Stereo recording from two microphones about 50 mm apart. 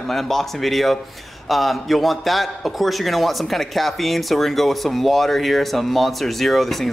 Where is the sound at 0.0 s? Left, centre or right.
Centre.